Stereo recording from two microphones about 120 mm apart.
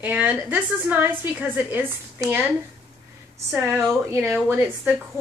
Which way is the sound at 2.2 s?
30° right (ahead or behind).